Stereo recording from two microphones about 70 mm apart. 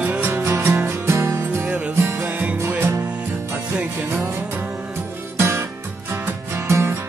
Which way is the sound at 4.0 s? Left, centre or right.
Right.